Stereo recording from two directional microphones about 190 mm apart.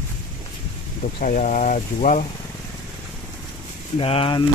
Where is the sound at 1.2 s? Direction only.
45° left (ahead or behind).